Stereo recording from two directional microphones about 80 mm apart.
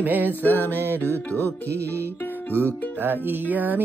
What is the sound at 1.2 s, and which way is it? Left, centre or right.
Music, left.